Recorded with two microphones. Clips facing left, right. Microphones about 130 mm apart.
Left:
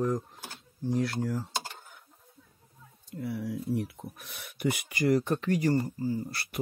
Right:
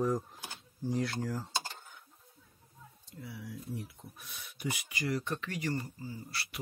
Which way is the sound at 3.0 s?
55° left (ahead or behind).